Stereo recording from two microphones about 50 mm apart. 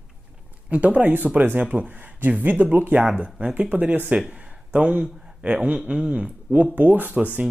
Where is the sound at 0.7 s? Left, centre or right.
Right.